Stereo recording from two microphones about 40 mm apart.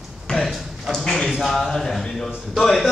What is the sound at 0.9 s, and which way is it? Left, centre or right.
A man's voice, centre.